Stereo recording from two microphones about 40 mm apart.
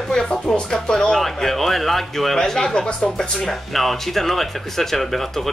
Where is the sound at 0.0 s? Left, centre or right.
Centre.